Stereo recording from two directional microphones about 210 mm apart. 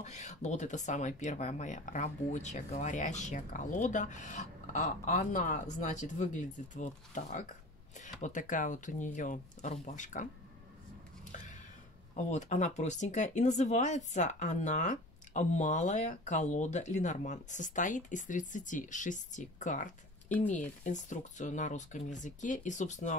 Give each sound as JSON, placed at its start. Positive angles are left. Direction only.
{"t": 0.0, "sound": "speech", "side_deg": 35}
{"t": 11.3, "sound": "a sound", "side_deg": 35}
{"t": 12.2, "sound": "speech", "side_deg": 35}